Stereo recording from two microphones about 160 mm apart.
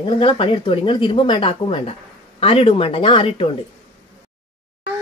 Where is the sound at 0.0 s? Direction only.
30° left (ahead or behind).